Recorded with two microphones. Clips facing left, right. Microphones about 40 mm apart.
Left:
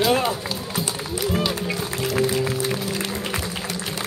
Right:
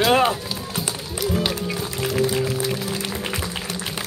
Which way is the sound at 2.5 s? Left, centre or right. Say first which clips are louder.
Even; left.